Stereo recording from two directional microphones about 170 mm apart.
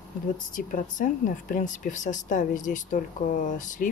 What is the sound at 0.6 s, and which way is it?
Speech, 50° left (ahead or behind).